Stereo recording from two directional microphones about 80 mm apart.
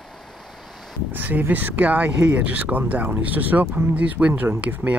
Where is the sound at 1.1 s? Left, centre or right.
Right.